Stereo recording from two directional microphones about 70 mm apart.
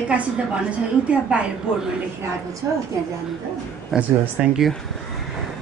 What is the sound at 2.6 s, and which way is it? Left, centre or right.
Speech, right.